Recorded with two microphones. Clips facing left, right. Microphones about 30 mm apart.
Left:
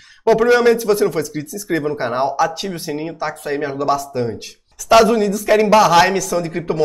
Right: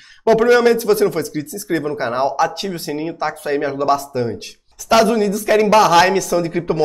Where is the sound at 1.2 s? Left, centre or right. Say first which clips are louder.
Left 1 dB; right.